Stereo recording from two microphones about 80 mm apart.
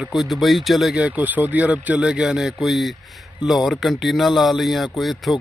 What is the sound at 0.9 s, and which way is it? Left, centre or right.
Speech, centre.